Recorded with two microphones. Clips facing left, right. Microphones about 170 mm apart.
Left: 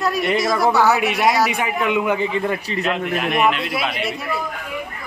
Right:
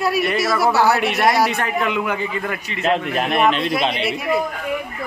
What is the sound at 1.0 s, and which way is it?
A man's voice, 10° left (ahead or behind).